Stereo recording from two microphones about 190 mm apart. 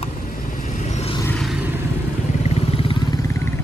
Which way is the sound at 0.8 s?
35° left (ahead or behind).